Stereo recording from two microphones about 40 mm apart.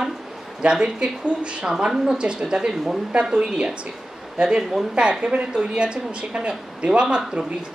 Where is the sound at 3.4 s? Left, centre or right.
Right.